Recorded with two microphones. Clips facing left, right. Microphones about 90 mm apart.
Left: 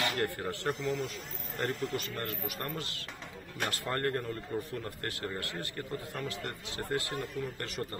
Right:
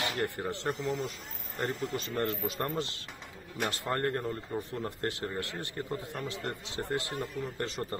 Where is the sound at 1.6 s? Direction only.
15° right (ahead or behind).